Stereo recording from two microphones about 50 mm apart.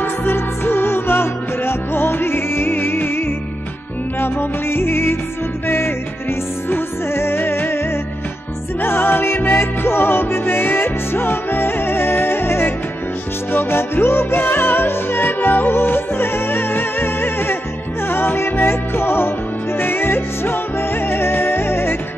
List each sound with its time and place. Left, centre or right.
0.0 s music: left
8.8 s music: left